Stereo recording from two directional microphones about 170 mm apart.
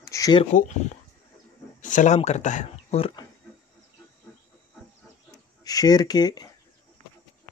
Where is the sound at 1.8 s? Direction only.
45° left (ahead or behind).